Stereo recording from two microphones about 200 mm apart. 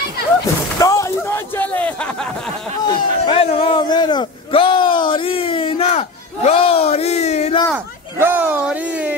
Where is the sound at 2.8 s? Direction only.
25° left (ahead or behind).